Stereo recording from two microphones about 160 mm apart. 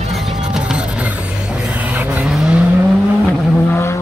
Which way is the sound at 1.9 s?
5° right (ahead or behind).